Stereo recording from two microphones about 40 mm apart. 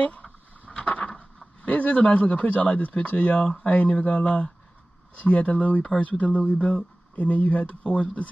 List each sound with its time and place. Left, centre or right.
0.0 s a sound: left
1.6 s speech: left
3.4 s speech: centre
3.7 s speech: left